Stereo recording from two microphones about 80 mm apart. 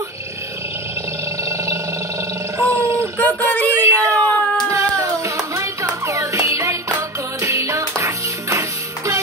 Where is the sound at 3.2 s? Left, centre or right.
Left.